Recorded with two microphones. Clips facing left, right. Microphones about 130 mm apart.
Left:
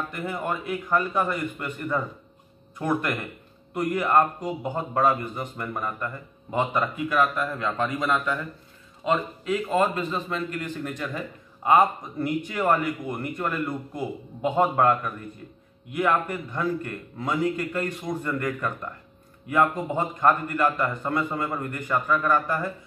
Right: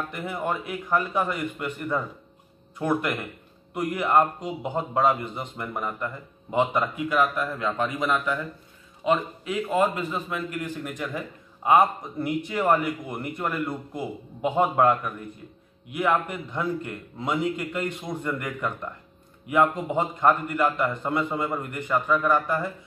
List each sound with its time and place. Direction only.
0.1 s a man's voice: 15° right (ahead or behind)
3.7 s a man's voice: 10° right (ahead or behind)